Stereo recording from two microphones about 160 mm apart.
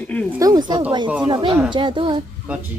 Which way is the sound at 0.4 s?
25° right (ahead or behind).